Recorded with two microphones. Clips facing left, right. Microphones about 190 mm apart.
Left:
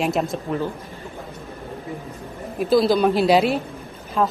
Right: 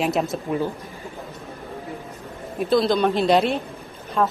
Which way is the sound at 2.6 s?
5° left (ahead or behind).